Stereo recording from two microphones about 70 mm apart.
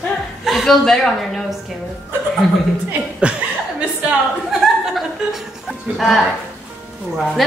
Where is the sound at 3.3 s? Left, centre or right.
Centre.